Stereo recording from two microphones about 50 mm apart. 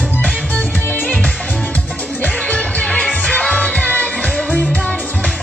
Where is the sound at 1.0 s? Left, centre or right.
Left.